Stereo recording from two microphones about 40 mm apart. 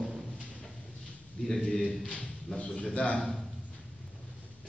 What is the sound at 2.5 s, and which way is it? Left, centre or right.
Speech, left.